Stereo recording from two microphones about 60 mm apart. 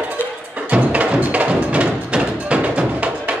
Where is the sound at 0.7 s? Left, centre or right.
Right.